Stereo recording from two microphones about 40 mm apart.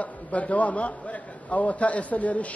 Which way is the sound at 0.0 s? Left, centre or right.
Left.